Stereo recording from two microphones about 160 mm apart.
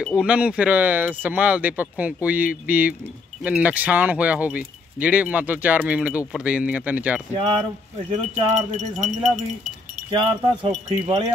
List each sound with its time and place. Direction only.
0.0 s speech: 5° right (ahead or behind)
7.3 s speech: 30° right (ahead or behind)
8.1 s speech: 50° right (ahead or behind)
10.1 s speech: 30° right (ahead or behind)